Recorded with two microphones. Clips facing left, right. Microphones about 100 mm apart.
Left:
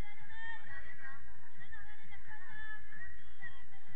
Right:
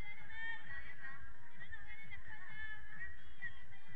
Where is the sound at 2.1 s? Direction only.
20° left (ahead or behind).